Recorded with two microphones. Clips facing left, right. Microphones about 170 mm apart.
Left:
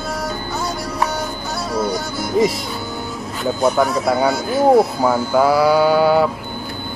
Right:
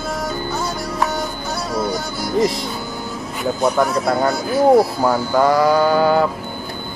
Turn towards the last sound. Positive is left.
turn(degrees=5)  # may be behind; listen again after turning